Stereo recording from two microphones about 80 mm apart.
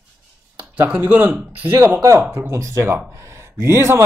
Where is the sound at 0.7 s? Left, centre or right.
Right.